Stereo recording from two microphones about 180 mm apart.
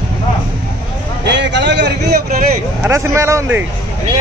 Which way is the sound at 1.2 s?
75° right (ahead or behind).